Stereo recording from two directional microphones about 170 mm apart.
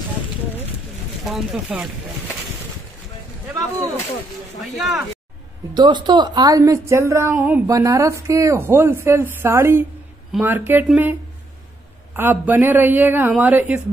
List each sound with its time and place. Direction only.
1.2 s speech: 5° right (ahead or behind)
4.6 s speech: centre (ahead or behind)
5.8 s a woman's voice: 25° right (ahead or behind); by 11.1 s 10° right (ahead or behind)
12.2 s a woman's voice: 10° right (ahead or behind)